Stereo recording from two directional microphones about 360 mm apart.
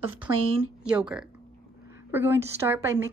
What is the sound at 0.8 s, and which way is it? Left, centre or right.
A woman's voice, centre.